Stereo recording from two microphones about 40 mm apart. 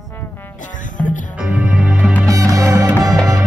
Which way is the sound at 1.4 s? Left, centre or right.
Right.